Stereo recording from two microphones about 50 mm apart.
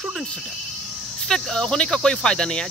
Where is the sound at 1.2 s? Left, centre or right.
Centre.